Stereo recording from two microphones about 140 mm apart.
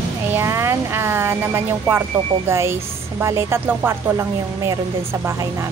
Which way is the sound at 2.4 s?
20° right (ahead or behind).